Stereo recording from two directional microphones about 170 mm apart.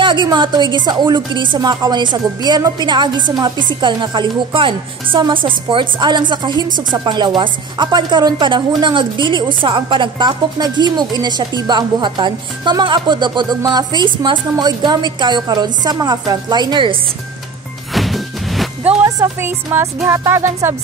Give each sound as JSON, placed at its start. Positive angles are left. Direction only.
{"t": 0.0, "sound": "a woman's voice", "side_deg": -25}
{"t": 17.9, "sound": "music", "side_deg": 0}
{"t": 19.0, "sound": "speech", "side_deg": -15}